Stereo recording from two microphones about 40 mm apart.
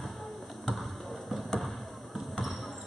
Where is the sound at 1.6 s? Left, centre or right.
Centre.